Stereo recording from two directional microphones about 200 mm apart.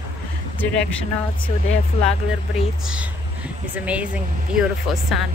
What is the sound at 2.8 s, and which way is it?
Speech, 5° right (ahead or behind).